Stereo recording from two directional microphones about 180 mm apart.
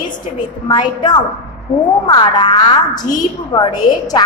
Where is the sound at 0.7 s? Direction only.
25° left (ahead or behind).